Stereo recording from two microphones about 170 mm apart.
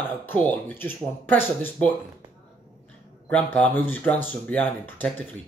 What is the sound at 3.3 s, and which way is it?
Speech, 10° left (ahead or behind).